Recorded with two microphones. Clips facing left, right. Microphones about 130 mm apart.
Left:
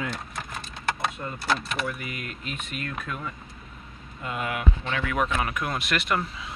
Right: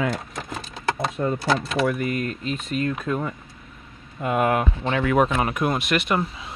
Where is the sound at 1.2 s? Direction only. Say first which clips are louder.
Right 11 dB; 90° right.